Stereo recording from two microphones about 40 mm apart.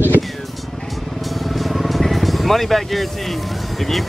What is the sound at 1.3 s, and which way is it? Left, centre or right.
Vehicle, centre.